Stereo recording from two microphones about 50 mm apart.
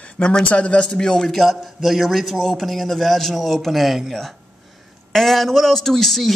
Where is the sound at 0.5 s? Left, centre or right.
Left.